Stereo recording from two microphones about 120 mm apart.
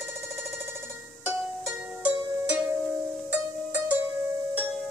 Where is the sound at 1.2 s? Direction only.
10° right (ahead or behind).